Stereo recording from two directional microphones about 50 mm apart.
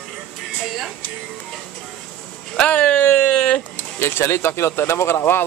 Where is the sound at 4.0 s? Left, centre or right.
Left.